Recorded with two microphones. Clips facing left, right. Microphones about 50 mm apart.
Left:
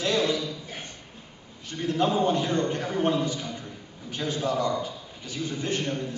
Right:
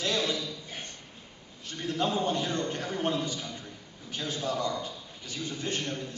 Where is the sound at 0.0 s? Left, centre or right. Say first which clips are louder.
Left 5 dB; centre.